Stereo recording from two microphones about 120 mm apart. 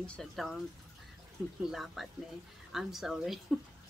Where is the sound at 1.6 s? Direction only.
Centre (ahead or behind).